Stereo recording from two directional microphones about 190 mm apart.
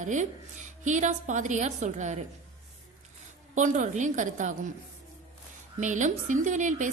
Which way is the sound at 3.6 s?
40° right (ahead or behind).